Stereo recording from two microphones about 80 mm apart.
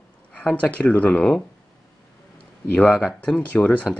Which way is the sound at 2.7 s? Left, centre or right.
Centre.